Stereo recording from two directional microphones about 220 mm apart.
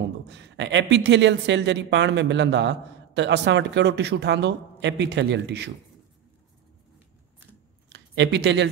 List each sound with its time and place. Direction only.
0.3 s speech: 55° right (ahead or behind)
7.9 s speech: 55° right (ahead or behind)